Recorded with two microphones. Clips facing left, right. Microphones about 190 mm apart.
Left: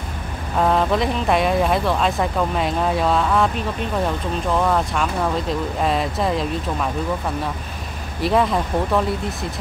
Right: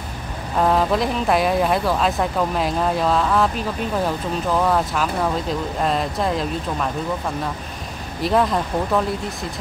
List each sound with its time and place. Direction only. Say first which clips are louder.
0.6 s speech: even; centre (ahead or behind)
8.2 s speech: even; centre (ahead or behind)